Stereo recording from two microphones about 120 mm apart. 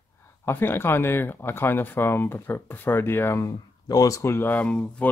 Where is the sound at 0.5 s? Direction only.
20° left (ahead or behind).